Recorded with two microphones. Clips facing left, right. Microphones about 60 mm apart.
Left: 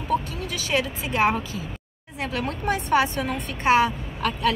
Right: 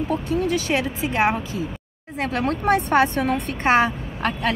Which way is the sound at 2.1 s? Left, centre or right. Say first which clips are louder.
Right 5 dB; right.